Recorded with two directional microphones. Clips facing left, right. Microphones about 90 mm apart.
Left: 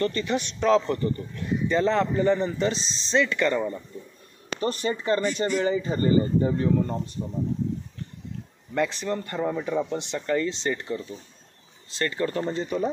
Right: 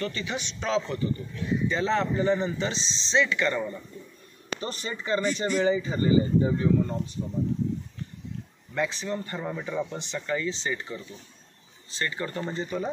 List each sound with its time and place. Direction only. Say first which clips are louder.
0.1 s speech: left 6 dB; 50° left (ahead or behind)
8.7 s speech: left 3 dB; 60° left (ahead or behind)